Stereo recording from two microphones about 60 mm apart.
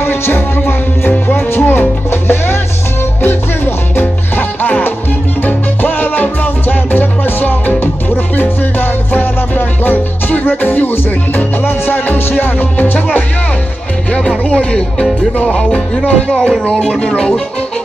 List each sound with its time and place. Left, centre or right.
0.0 s music: left
14.1 s music: centre
16.7 s speech: centre